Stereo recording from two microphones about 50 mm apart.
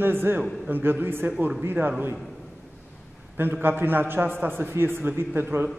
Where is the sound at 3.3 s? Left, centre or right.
Right.